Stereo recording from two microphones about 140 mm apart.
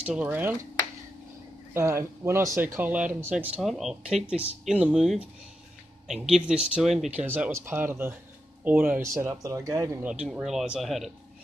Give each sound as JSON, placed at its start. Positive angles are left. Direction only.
{"t": 0.0, "sound": "speech", "side_deg": -10}
{"t": 1.7, "sound": "speech", "side_deg": -20}
{"t": 6.3, "sound": "speech", "side_deg": -5}
{"t": 10.0, "sound": "speech", "side_deg": -5}